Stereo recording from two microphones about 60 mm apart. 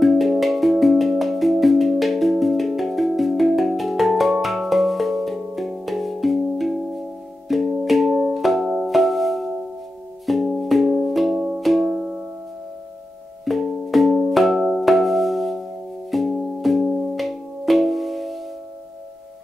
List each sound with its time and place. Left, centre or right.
0.0 s music: centre
11.8 s music: centre
13.5 s music: centre